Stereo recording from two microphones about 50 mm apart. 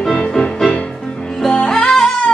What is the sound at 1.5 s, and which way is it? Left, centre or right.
Music, centre.